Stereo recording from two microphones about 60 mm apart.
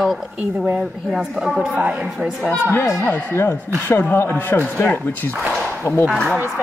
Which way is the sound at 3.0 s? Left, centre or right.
Left.